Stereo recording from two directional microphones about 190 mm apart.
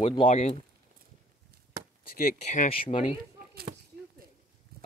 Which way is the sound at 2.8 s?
30° left (ahead or behind).